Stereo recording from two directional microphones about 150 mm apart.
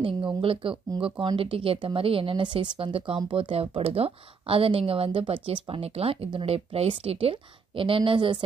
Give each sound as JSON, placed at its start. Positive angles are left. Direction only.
{"t": 0.0, "sound": "speech", "side_deg": -35}